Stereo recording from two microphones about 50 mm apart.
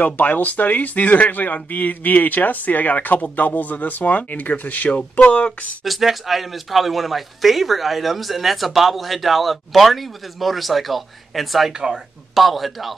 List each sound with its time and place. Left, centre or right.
0.0 s speech: left
5.9 s speech: centre
11.7 s speech: centre
12.4 s speech: centre